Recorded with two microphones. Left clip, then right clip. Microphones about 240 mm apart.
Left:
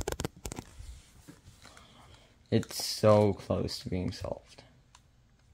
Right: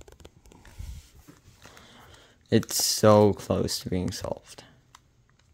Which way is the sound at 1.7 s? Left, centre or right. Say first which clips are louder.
Right 5 dB; right.